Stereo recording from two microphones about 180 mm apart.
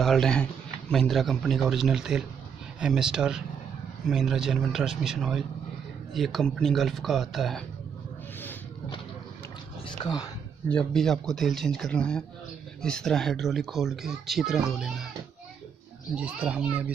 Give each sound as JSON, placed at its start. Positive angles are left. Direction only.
{"t": 0.0, "sound": "speech", "side_deg": 0}
{"t": 9.8, "sound": "speech", "side_deg": 20}
{"t": 10.7, "sound": "speech", "side_deg": 5}
{"t": 16.2, "sound": "a child's voice", "side_deg": -5}